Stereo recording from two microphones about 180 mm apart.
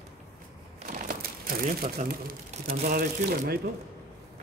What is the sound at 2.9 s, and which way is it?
Speech, 55° right (ahead or behind).